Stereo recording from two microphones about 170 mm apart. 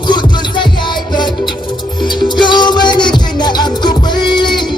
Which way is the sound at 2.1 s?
25° left (ahead or behind).